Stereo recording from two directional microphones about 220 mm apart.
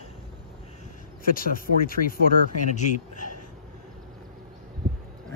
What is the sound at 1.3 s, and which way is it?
Speech, 40° left (ahead or behind).